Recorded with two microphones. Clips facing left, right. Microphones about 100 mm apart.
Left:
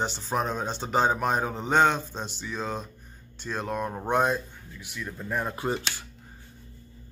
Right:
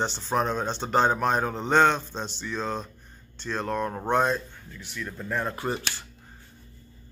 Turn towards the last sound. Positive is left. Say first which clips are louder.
# left 1 dB
turn(degrees=15)  # may be behind; listen again after turning